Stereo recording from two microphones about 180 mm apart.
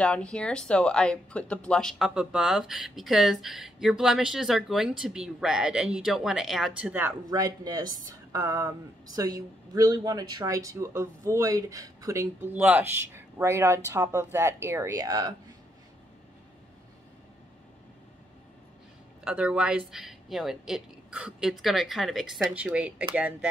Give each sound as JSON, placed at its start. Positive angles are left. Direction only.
{"t": 0.0, "sound": "speech", "side_deg": 5}
{"t": 19.2, "sound": "speech", "side_deg": -5}